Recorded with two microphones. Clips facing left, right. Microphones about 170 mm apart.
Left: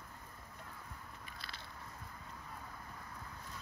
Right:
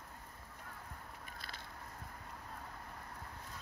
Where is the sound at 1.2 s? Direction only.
45° right (ahead or behind).